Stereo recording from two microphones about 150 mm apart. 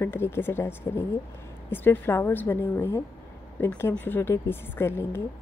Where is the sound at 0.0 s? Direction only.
15° left (ahead or behind).